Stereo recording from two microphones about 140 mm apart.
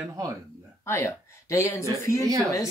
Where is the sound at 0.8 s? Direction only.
20° left (ahead or behind).